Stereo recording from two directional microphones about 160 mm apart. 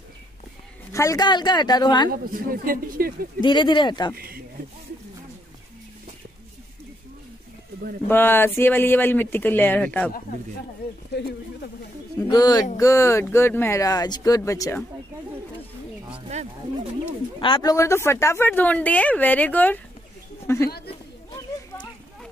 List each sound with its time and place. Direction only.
0.9 s speech: 20° left (ahead or behind)
2.0 s speech: 65° right (ahead or behind)
3.3 s speech: 30° left (ahead or behind)
4.1 s speech: 70° right (ahead or behind)
8.1 s speech: 15° left (ahead or behind)
11.1 s speech: 90° left
12.2 s speech: 25° left (ahead or behind)
16.3 s speech: 45° right (ahead or behind)
17.4 s speech: 30° left (ahead or behind)
17.7 s speech: 15° left (ahead or behind)
20.4 s a sound: 15° left (ahead or behind)